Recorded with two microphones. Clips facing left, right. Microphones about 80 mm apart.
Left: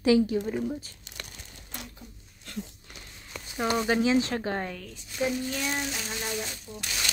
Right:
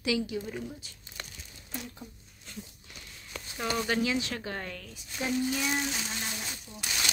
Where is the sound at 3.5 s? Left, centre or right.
Left.